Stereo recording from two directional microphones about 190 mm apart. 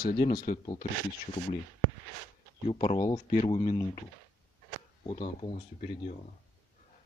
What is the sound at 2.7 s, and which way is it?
Speech, 30° left (ahead or behind).